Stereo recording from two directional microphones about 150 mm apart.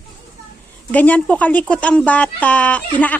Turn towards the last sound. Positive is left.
turn(degrees=10)  # may be behind; listen again after turning